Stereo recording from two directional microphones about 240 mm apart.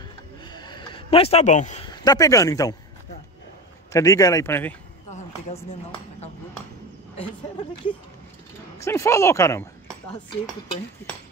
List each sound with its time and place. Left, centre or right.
0.5 s a sound: centre
1.9 s speech: centre
3.9 s speech: centre
5.1 s a sound: left
8.7 s speech: centre
11.0 s speech: centre